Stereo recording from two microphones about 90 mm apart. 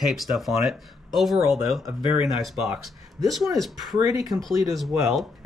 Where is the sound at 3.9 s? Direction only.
35° right (ahead or behind).